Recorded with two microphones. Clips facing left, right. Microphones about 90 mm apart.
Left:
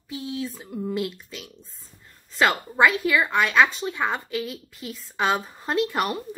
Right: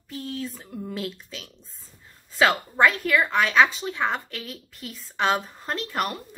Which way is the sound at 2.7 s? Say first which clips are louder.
Left 1 dB; 5° left (ahead or behind).